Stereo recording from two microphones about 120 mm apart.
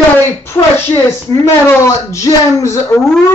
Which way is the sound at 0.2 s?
20° left (ahead or behind).